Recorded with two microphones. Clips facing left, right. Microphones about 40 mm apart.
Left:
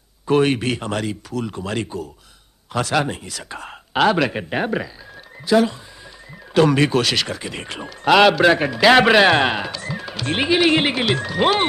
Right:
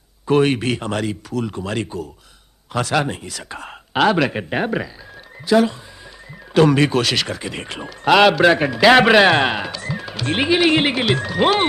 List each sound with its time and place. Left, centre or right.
0.3 s speech: centre